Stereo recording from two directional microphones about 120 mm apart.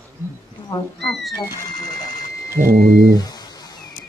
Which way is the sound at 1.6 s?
35° left (ahead or behind).